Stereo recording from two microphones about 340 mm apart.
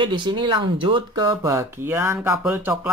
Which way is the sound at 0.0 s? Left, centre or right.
Centre.